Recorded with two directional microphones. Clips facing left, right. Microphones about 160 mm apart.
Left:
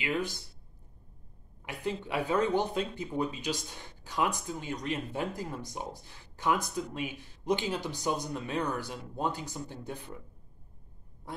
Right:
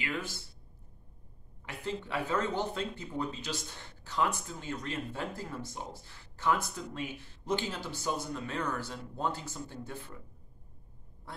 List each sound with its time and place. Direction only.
0.0 s speech: 15° left (ahead or behind)
1.7 s speech: 15° left (ahead or behind)
11.3 s quack: 15° left (ahead or behind)